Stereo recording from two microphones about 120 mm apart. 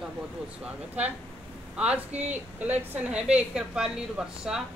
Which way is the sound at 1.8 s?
10° right (ahead or behind).